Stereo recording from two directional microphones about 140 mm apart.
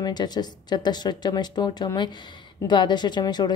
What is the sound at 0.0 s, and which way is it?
Speech, 30° left (ahead or behind).